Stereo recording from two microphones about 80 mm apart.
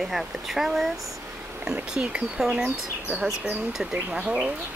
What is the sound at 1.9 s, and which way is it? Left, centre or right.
Speech, centre.